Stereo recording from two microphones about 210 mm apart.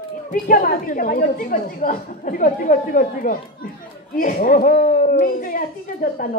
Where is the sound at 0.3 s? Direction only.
40° left (ahead or behind).